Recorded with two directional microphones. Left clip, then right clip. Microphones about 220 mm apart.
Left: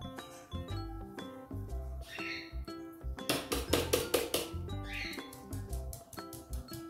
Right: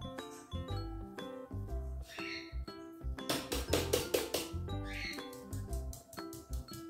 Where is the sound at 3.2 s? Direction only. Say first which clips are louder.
Left 3 dB; 25° left (ahead or behind).